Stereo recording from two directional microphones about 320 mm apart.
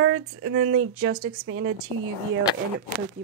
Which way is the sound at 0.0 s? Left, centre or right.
Right.